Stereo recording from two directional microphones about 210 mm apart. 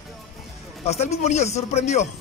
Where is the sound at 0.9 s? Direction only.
30° left (ahead or behind).